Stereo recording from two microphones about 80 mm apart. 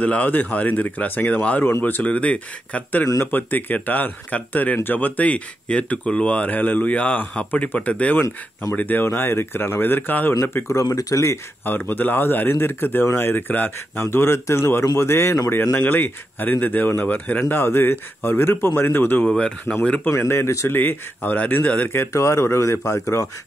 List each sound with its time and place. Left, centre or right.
0.0 s speech: centre; by 11.3 s left
11.6 s speech: left
15.7 s speech: left
19.2 s speech: centre
20.1 s speech: left
21.9 s speech: left